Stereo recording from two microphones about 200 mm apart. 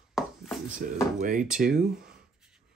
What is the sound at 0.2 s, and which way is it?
Dishes, centre (ahead or behind).